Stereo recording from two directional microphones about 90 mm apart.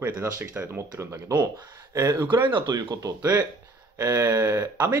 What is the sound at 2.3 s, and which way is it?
Speech, 60° right (ahead or behind).